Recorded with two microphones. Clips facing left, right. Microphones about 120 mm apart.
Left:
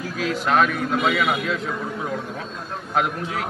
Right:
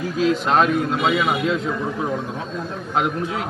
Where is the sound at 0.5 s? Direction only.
30° right (ahead or behind).